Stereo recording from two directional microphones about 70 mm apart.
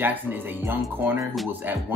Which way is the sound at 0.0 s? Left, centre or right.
Right.